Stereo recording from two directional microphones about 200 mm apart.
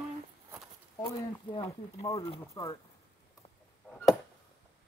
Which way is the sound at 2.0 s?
15° left (ahead or behind).